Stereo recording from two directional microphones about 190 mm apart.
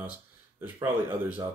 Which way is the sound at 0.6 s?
10° right (ahead or behind).